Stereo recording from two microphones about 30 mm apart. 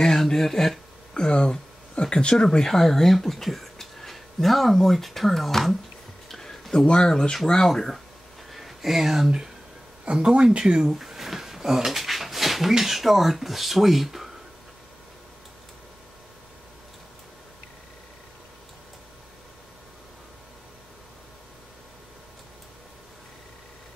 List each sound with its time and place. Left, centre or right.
0.0 s a sound: centre
1.1 s speech: left
2.6 s speech: centre
6.7 s speech: left
7.6 s speech: centre
8.5 s a sound: centre
10.3 s speech: right
10.6 s speech: centre
11.0 s a sound: centre
11.9 s dog: centre
12.8 s speech: centre